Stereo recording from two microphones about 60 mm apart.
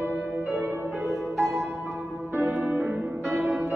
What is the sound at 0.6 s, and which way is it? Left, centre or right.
Music, right.